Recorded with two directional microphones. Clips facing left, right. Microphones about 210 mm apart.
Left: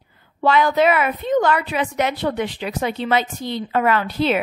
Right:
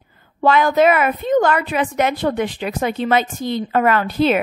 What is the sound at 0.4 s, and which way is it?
A woman's voice, 50° right (ahead or behind).